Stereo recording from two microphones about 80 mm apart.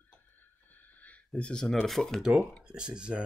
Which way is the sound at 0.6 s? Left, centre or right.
Left.